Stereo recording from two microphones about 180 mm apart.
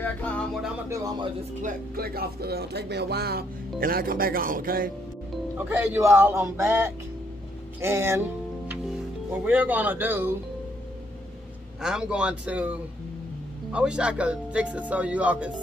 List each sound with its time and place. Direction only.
0.0 s music: 10° left (ahead or behind)
0.8 s a man's voice: 20° right (ahead or behind)
1.6 s speech: 50° right (ahead or behind)
5.7 s speech: 15° right (ahead or behind)
9.4 s speech: 10° right (ahead or behind)
11.8 s speech: 5° right (ahead or behind)